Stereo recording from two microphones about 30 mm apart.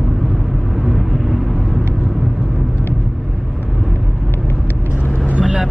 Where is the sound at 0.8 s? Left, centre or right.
Centre.